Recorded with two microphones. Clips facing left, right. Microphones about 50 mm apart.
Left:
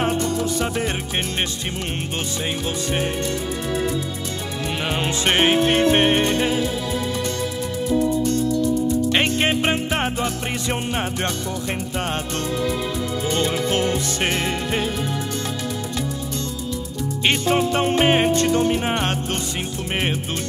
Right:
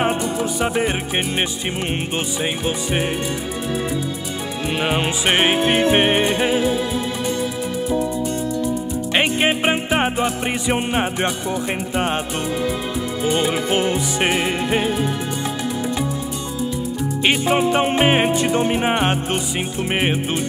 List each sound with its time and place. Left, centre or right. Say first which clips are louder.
0.0 s music: right 1 dB; centre
4.8 s music: right 2 dB; centre
8.2 s music: left 2 dB; centre
13.2 s music: right 3 dB; centre
17.2 s music: right 2 dB; centre